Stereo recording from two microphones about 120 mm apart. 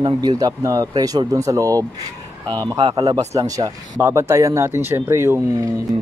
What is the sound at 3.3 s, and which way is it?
Speech, 30° right (ahead or behind).